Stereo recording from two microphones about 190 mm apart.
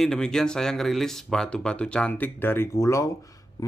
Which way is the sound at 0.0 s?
5° left (ahead or behind).